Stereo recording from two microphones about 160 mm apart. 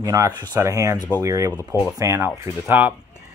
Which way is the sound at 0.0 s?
20° right (ahead or behind).